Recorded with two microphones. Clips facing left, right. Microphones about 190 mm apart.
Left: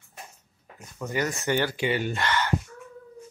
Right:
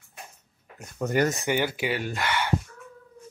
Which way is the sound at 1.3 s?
10° right (ahead or behind).